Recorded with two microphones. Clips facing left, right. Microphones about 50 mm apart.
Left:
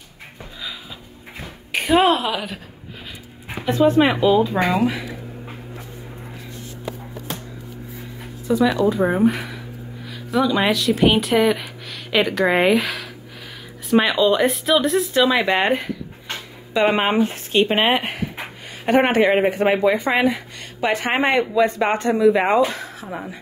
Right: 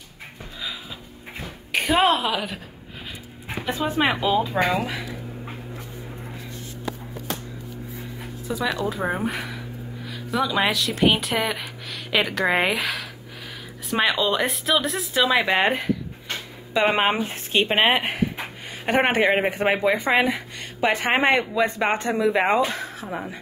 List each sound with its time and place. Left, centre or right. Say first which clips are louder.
1.4 s a sound: even; centre
3.4 s speech: left 9 dB; centre
4.6 s speech: left 3 dB; centre
8.2 s a sound: left 10 dB; centre
8.8 s speech: left 8 dB; centre
23.0 s speech: left 1 dB; centre